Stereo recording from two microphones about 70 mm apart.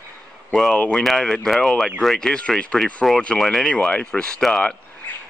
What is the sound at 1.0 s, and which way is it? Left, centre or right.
Speech, centre.